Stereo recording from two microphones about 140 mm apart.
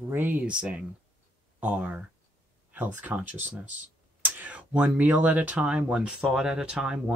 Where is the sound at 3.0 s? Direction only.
15° right (ahead or behind).